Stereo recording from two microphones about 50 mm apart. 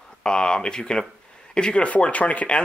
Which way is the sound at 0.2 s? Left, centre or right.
Centre.